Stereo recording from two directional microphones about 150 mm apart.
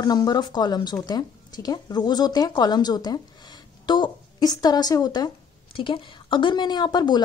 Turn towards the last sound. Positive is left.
turn(degrees=30)  # may be behind; listen again after turning